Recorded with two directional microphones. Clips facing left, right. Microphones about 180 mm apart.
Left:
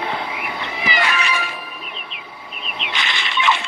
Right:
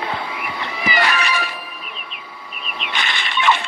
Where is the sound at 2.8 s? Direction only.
50° right (ahead or behind).